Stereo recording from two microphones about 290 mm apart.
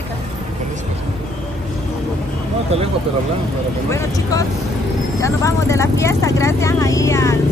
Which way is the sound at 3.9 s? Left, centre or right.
Centre.